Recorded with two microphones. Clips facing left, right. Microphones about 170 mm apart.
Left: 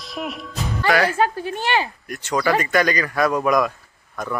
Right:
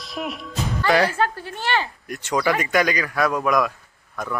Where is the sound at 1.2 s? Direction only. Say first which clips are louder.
Left 3 dB; 15° left (ahead or behind).